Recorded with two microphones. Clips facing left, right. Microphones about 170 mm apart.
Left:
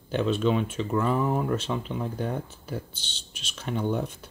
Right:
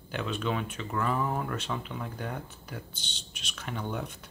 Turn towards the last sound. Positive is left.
turn(degrees=20)  # may be behind; listen again after turning